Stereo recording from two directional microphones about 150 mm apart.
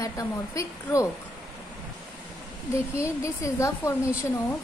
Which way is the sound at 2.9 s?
20° left (ahead or behind).